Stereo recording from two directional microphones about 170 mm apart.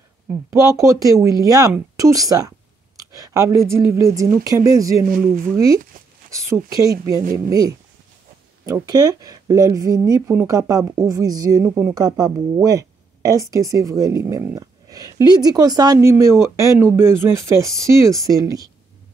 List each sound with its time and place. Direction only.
0.3 s speech: 20° right (ahead or behind)
5.0 s speech: 55° right (ahead or behind)
5.4 s speech: 20° right (ahead or behind)
7.2 s speech: 55° right (ahead or behind)
8.6 s a woman's voice: 20° right (ahead or behind)